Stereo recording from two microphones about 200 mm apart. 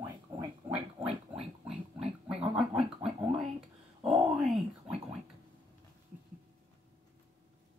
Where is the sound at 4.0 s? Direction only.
Centre (ahead or behind).